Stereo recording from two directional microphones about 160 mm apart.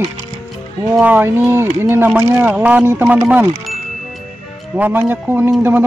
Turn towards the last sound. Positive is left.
turn(degrees=-15)  # may be behind; listen again after turning